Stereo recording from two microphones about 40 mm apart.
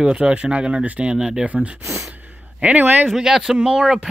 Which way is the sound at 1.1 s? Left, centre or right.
Right.